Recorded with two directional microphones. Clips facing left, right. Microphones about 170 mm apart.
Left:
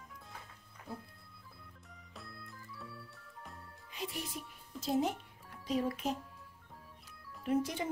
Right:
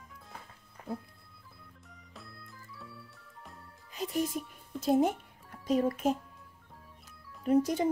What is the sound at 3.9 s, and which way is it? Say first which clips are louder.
Speech: right 10 dB; 45° right (ahead or behind).